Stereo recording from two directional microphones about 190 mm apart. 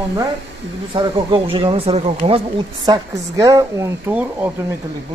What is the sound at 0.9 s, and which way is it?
Speech, 25° right (ahead or behind).